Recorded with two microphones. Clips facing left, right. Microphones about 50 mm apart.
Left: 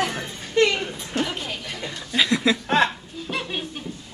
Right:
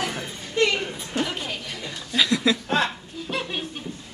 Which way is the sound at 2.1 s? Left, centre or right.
Centre.